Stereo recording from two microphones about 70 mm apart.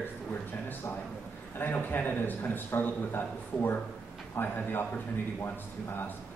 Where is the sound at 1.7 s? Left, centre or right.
Left.